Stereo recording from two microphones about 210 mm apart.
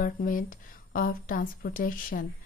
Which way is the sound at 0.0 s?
40° left (ahead or behind).